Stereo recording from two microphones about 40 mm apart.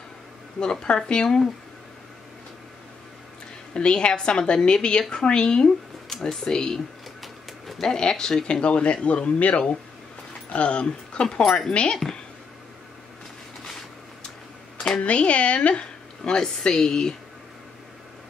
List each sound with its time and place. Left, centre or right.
0.6 s speech: centre
3.7 s speech: left
7.8 s speech: centre
11.4 s speech: centre
11.7 s speech: left
14.8 s speech: left